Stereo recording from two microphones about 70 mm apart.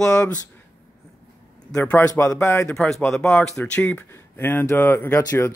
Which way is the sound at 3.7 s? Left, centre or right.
Left.